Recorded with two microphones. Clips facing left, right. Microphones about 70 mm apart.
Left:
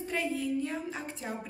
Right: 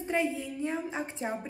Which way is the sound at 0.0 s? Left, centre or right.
Right.